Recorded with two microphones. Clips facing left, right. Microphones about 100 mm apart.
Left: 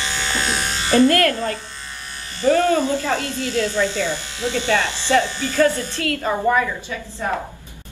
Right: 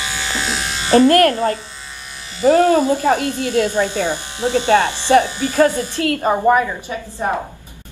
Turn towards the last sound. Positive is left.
turn(degrees=-20)  # may be behind; listen again after turning